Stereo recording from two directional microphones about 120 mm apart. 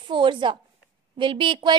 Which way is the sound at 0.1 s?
45° right (ahead or behind).